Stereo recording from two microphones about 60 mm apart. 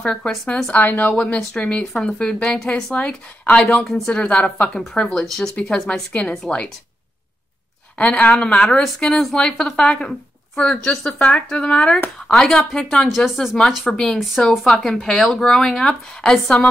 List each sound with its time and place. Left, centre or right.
0.0 s a woman's voice: centre
0.7 s a woman's voice: left
1.1 s a woman's voice: centre
4.1 s a woman's voice: centre
4.7 s a woman's voice: centre
8.0 s a woman's voice: left
8.8 s a woman's voice: centre
13.7 s a woman's voice: centre